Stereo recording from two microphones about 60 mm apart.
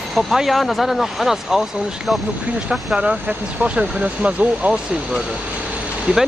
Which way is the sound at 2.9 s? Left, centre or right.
Centre.